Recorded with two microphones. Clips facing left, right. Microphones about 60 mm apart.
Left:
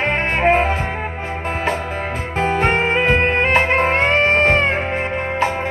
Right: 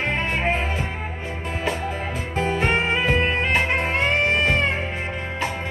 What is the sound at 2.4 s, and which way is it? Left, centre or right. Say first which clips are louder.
Music: left 5 dB; left.